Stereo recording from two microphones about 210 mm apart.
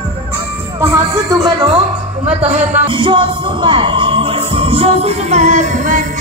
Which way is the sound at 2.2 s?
30° right (ahead or behind).